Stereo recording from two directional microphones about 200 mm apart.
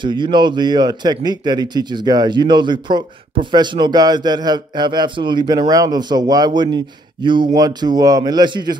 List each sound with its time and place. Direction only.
0.0 s speech: 25° right (ahead or behind)